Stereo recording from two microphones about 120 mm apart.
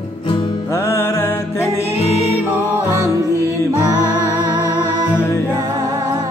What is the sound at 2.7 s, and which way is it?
Music, 25° right (ahead or behind).